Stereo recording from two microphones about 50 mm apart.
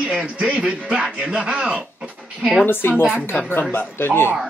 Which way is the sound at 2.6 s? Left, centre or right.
Left.